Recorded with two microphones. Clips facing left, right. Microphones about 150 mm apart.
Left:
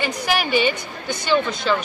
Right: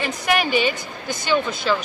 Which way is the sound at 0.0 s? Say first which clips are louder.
Right 1 dB; centre (ahead or behind).